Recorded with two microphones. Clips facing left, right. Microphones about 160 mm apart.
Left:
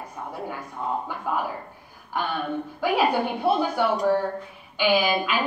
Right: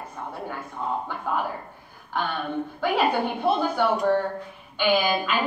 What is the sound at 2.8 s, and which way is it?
A woman's voice, 10° left (ahead or behind).